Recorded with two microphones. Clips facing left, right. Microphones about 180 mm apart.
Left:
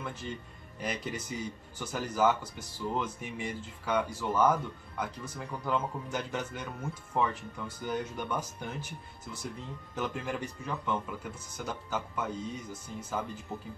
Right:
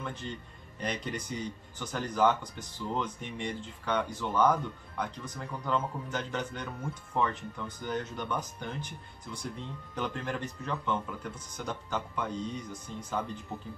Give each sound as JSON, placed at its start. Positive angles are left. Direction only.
{"t": 0.0, "sound": "speech", "side_deg": 5}